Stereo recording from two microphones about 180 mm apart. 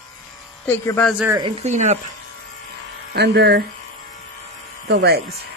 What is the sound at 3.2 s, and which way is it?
Speech, 65° right (ahead or behind).